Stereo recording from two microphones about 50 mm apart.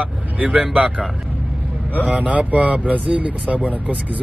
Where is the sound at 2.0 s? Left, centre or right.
Right.